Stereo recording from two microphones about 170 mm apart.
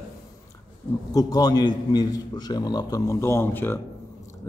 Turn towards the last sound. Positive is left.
turn(degrees=15)  # may be behind; listen again after turning